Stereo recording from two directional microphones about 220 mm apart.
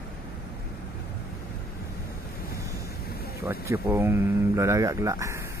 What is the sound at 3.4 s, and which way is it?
Speech, 10° right (ahead or behind).